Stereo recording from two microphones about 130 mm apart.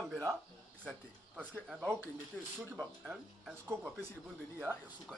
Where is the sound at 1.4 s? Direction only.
10° right (ahead or behind).